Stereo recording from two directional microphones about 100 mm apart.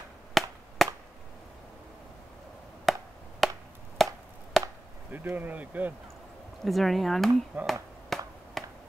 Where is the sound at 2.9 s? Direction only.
Centre (ahead or behind).